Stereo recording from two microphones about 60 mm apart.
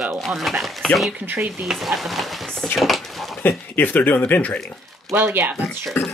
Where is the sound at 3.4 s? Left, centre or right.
Left.